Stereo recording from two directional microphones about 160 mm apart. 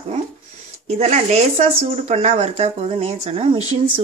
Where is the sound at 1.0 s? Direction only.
45° right (ahead or behind).